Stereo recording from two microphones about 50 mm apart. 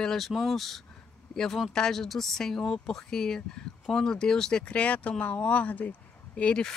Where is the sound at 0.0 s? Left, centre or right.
Centre.